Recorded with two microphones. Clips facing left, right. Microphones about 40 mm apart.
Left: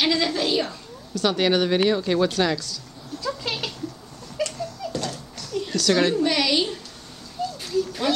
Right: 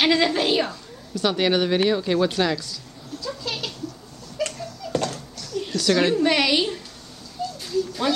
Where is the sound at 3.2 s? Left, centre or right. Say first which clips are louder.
Left 2 dB; left.